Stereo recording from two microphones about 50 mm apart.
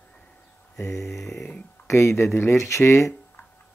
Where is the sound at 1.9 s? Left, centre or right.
Left.